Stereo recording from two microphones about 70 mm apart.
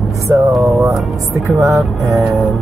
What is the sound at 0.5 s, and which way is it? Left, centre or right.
Speech, centre.